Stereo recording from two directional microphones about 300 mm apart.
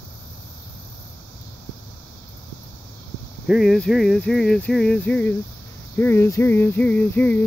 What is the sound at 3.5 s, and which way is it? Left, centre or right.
Speech, centre.